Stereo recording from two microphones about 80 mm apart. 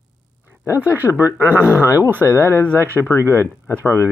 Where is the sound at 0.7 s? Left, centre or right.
Right.